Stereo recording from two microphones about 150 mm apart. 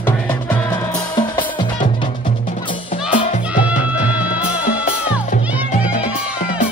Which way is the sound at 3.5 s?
10° right (ahead or behind).